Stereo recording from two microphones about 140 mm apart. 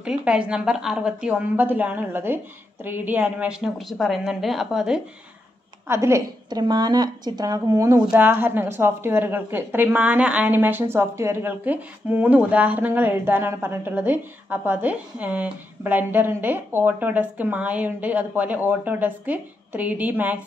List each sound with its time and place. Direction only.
0.0 s a woman's voice: 5° right (ahead or behind)
5.9 s a woman's voice: 20° right (ahead or behind)